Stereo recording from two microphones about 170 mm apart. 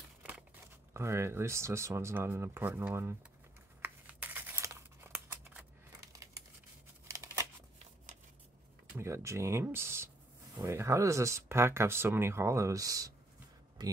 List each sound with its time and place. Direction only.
0.2 s crumpling: 5° right (ahead or behind)
0.9 s speech: 15° right (ahead or behind)
3.8 s crumpling: 10° right (ahead or behind)
7.1 s scissors: 15° right (ahead or behind)
8.9 s speech: 15° right (ahead or behind)